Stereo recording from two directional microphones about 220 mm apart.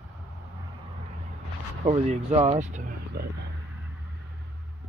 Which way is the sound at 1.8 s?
30° right (ahead or behind).